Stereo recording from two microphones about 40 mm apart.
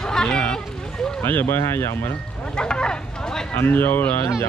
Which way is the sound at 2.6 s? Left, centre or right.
Left.